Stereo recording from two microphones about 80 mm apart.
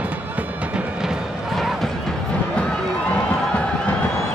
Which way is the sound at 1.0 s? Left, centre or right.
Centre.